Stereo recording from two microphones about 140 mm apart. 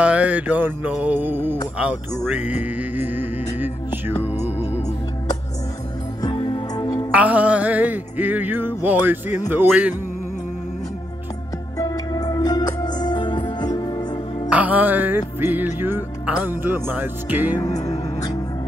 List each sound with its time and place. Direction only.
0.0 s music: 10° right (ahead or behind)
6.3 s music: 40° left (ahead or behind)
6.7 s music: 25° left (ahead or behind)
7.1 s music: 10° right (ahead or behind)
11.8 s music: 25° left (ahead or behind)
14.5 s music: 10° right (ahead or behind)
17.6 s music: 25° left (ahead or behind)